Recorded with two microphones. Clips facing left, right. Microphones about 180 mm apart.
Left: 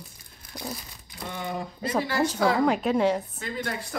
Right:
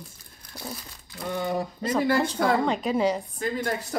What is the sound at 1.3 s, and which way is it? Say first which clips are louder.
Speech: right 5 dB; 45° right (ahead or behind).